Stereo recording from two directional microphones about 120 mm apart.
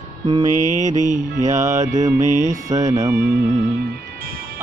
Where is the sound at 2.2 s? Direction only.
90° right.